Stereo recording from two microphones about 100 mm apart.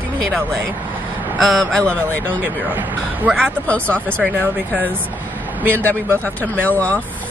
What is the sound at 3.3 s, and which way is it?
Speech, 10° left (ahead or behind).